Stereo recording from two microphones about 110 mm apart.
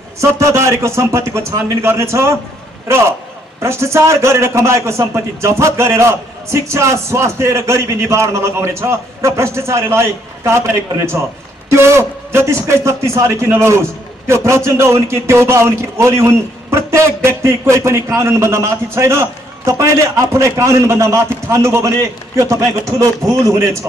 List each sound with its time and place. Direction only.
0.2 s a man's voice: 25° right (ahead or behind)